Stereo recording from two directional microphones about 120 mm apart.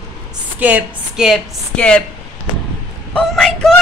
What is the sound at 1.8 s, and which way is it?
Speech, 5° left (ahead or behind).